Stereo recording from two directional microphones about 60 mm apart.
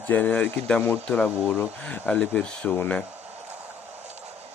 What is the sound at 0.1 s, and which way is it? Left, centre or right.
Speech, left.